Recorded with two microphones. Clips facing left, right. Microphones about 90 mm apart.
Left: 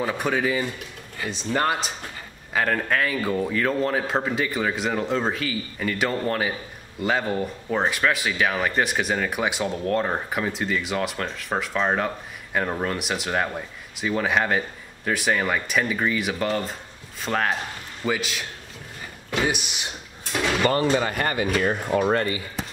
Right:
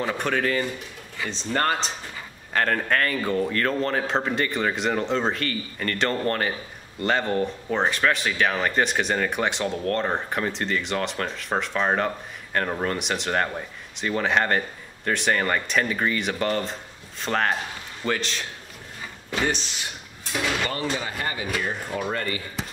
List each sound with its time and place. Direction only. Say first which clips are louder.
0.0 s speech: left 1 dB; 5° left (ahead or behind)
19.4 s speech: right 1 dB; 15° left (ahead or behind)
20.8 s speech: left 6 dB; 55° left (ahead or behind)
22.0 s speech: left 6 dB; 40° left (ahead or behind)